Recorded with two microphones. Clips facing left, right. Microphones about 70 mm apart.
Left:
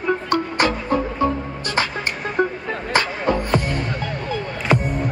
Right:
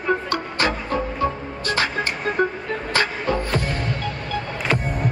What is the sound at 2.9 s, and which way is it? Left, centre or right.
Music, left.